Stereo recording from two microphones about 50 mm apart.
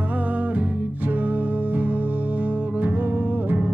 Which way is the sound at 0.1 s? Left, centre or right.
Right.